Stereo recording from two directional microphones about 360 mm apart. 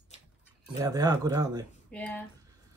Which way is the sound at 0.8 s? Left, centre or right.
Centre.